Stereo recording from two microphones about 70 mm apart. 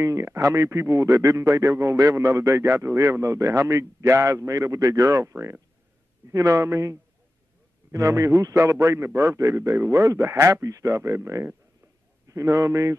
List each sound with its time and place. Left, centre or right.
0.0 s a man's voice: right
5.2 s a man's voice: right
6.6 s a man's voice: right